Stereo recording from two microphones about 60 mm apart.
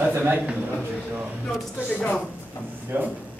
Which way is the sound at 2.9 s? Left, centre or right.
Right.